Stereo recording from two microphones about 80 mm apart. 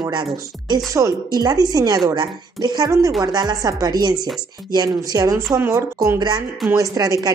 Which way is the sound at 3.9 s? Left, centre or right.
Right.